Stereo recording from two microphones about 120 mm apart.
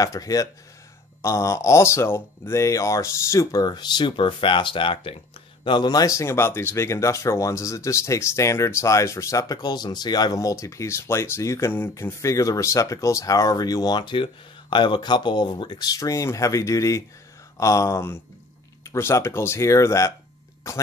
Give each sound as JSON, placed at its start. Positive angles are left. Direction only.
{"t": 0.0, "sound": "speech", "side_deg": 30}